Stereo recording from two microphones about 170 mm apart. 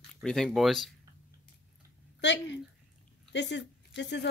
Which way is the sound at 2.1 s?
90° left.